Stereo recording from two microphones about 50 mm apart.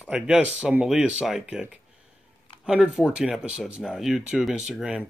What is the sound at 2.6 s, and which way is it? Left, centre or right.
Speech, centre.